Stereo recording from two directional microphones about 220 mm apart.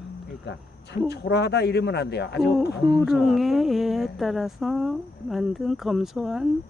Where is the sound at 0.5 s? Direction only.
50° left (ahead or behind).